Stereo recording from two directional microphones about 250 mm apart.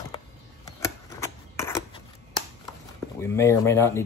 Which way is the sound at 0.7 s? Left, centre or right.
Centre.